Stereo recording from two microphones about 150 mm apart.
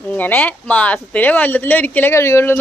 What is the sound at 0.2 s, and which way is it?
Speech, 10° left (ahead or behind).